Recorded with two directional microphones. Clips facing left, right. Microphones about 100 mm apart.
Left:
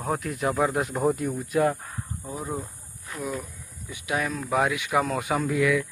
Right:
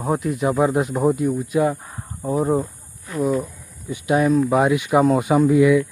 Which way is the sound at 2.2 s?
55° right (ahead or behind).